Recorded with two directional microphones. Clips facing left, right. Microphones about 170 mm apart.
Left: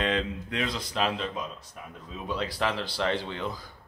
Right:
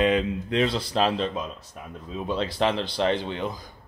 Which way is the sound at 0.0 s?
10° right (ahead or behind).